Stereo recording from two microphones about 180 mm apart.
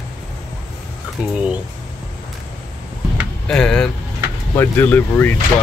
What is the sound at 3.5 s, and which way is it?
Speech, 5° left (ahead or behind).